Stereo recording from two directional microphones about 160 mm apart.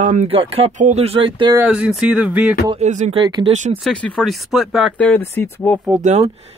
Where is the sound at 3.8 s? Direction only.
5° left (ahead or behind).